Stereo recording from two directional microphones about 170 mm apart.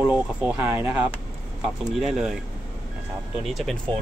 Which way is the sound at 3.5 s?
Centre (ahead or behind).